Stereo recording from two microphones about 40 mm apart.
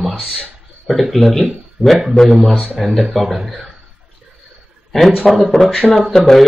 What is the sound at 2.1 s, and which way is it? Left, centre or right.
Speech, centre.